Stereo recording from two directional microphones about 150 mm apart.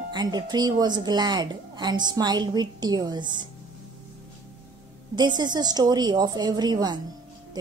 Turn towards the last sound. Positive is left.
turn(degrees=-30)  # may be behind; listen again after turning